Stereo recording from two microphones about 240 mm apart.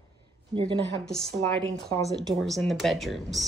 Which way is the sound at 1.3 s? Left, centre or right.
Right.